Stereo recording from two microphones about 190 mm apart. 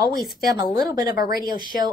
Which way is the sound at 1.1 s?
50° left (ahead or behind).